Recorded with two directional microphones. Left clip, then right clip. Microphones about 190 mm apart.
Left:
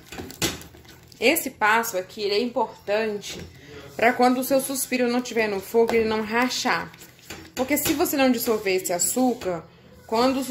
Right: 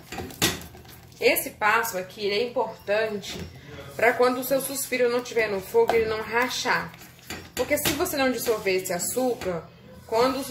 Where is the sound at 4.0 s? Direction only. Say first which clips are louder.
Left 1 dB; 55° left (ahead or behind).